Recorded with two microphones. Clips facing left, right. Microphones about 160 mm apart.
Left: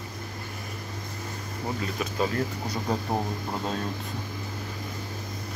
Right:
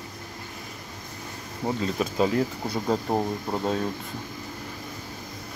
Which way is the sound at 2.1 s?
20° right (ahead or behind).